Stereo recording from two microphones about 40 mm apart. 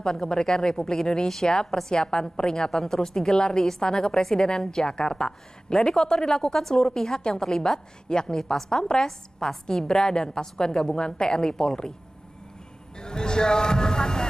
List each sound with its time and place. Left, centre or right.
0.0 s a woman's voice: centre
12.9 s speech: centre